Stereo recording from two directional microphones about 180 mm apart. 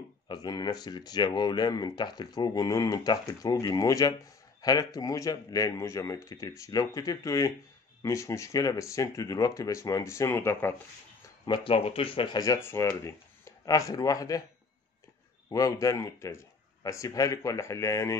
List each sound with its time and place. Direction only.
0.3 s speech: 20° left (ahead or behind)
11.4 s speech: 30° left (ahead or behind)
15.5 s speech: 20° left (ahead or behind)